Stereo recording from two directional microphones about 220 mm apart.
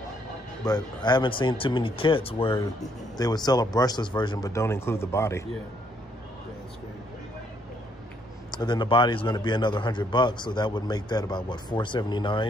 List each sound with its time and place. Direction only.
0.7 s a man's voice: 20° left (ahead or behind)
8.5 s a man's voice: 20° left (ahead or behind)